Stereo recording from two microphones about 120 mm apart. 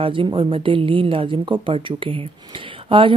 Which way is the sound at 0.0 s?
45° right (ahead or behind).